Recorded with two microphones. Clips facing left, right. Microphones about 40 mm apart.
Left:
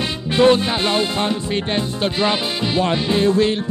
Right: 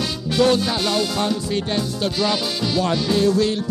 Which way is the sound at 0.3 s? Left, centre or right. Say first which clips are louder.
Left 3 dB; left.